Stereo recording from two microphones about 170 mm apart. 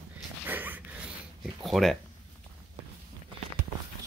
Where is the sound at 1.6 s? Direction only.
Centre (ahead or behind).